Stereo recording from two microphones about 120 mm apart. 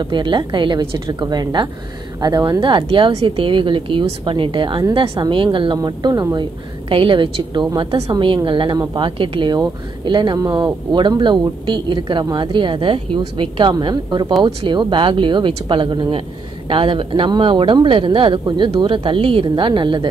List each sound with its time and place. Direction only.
0.0 s speech: 40° right (ahead or behind)
5.8 s speech: 30° right (ahead or behind)
6.9 s speech: 45° right (ahead or behind)